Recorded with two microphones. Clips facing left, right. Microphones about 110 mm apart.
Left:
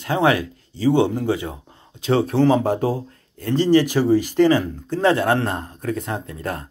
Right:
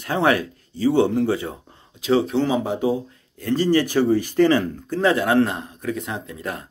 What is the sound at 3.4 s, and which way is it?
A man's voice, 25° left (ahead or behind).